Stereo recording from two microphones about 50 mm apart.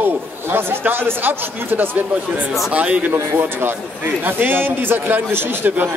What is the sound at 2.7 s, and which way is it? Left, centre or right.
Speech, right.